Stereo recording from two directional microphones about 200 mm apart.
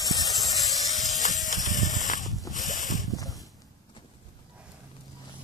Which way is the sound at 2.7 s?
40° left (ahead or behind).